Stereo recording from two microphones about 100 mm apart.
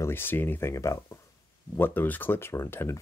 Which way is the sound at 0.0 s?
20° left (ahead or behind).